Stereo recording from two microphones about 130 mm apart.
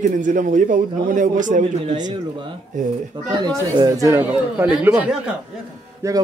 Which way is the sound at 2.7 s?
75° right (ahead or behind).